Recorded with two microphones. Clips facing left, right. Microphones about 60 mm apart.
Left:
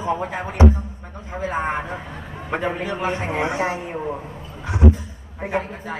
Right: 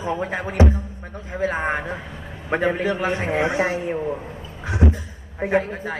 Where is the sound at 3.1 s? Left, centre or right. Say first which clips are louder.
Right 2 dB; right.